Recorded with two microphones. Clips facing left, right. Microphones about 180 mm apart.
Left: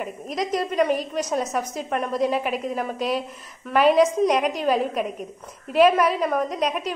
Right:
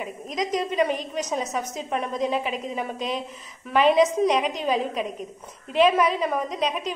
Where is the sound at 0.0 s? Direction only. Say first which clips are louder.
Left 1 dB; 5° left (ahead or behind).